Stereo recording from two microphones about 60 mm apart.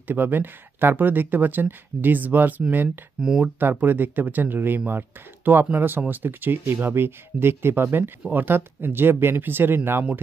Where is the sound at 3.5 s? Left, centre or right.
Right.